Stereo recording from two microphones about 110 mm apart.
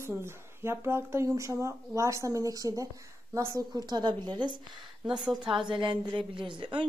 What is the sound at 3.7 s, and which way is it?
A woman's voice, 40° right (ahead or behind).